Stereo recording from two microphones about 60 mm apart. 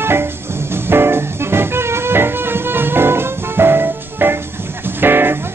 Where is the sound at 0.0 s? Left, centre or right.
Right.